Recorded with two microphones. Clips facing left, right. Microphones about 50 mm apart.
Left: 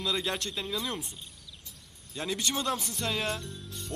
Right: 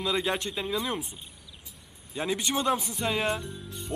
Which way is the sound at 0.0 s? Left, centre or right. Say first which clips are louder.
Right 3 dB; centre.